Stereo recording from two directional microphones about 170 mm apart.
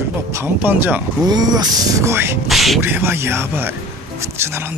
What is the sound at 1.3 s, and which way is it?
Speech, 25° right (ahead or behind).